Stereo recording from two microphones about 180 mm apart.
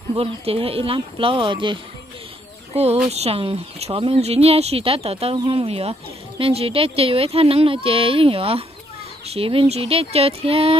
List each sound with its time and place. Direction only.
0.1 s speech: 30° right (ahead or behind)